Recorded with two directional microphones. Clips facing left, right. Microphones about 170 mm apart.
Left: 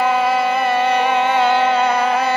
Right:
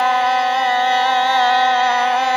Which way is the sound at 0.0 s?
10° left (ahead or behind).